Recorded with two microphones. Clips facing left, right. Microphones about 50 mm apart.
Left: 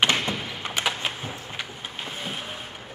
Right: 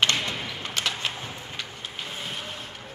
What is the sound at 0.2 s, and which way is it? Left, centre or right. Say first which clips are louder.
Thump: left 2 dB; centre.